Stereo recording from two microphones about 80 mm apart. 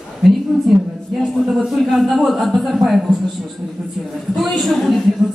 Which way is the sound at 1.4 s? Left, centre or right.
Centre.